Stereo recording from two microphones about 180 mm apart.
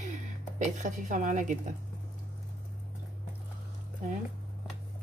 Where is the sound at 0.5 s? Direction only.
45° right (ahead or behind).